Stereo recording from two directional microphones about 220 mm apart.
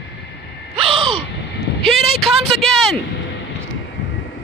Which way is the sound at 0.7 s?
25° right (ahead or behind).